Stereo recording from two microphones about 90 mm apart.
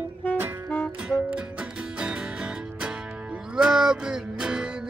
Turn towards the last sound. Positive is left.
turn(degrees=-10)  # may be behind; listen again after turning